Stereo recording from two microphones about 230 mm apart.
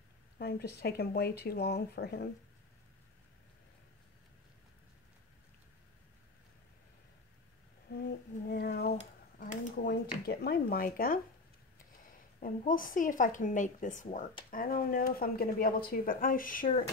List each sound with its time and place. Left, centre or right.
0.4 s speech: left
7.9 s a sound: left
10.2 s a woman's voice: left
12.4 s a woman's voice: left